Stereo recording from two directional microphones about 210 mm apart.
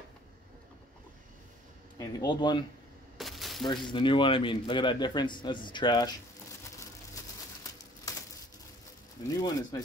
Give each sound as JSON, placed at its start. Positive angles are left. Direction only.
{"t": 2.0, "sound": "speech", "side_deg": 20}
{"t": 3.2, "sound": "a sound", "side_deg": 0}
{"t": 3.6, "sound": "speech", "side_deg": 20}
{"t": 8.1, "sound": "bird", "side_deg": 15}
{"t": 9.3, "sound": "speech", "side_deg": 20}